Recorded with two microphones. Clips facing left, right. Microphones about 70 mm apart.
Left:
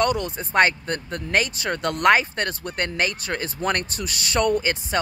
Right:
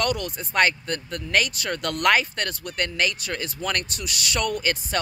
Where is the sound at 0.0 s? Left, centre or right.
Left.